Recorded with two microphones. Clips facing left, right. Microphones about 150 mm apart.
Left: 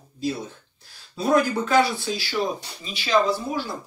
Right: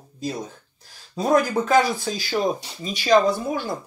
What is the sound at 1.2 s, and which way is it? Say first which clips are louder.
Speech: right 1 dB; 45° right (ahead or behind).